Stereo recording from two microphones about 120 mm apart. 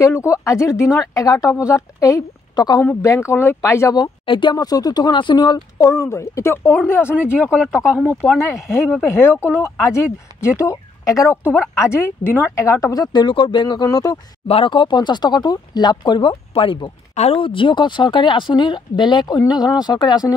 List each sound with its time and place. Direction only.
0.0 s a woman's voice: 25° left (ahead or behind)
2.8 s speech: 20° left (ahead or behind)
7.5 s speech: 5° right (ahead or behind)
8.4 s speech: 20° left (ahead or behind)
14.5 s speech: 45° left (ahead or behind)
17.1 s speech: 60° left (ahead or behind); by 20.3 s 35° left (ahead or behind)